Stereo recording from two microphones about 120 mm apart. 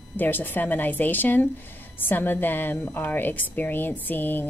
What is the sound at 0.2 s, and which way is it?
A woman's voice, 15° left (ahead or behind).